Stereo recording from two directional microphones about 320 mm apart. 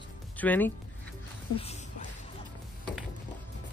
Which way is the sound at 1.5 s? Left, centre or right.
Centre.